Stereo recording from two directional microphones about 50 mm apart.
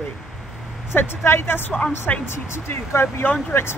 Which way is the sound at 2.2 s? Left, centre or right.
Left.